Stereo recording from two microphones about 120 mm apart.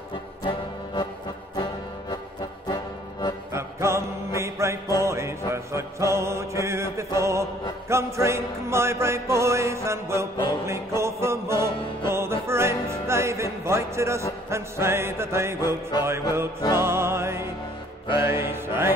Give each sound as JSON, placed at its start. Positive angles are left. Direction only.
{"t": 0.4, "sound": "music", "side_deg": 40}
{"t": 2.7, "sound": "music", "side_deg": 35}
{"t": 3.5, "sound": "music", "side_deg": -25}